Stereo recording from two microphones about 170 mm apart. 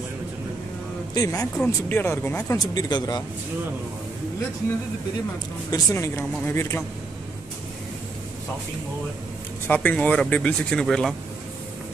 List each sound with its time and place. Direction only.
1.1 s speech: 20° left (ahead or behind)
5.7 s speech: 20° left (ahead or behind)
9.7 s speech: 10° left (ahead or behind)